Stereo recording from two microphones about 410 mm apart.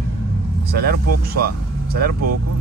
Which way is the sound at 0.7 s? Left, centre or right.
Right.